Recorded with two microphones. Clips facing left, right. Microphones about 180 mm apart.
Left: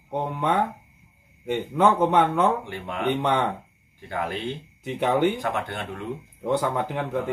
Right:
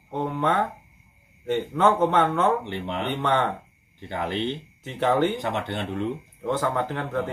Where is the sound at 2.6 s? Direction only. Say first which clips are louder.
Right 3 dB; 20° right (ahead or behind).